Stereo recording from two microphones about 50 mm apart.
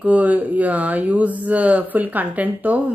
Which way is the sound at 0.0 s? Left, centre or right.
Right.